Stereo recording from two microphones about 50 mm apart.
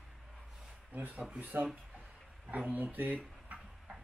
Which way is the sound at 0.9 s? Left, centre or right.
Right.